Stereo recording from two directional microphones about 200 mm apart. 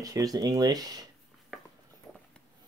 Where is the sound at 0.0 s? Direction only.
15° right (ahead or behind).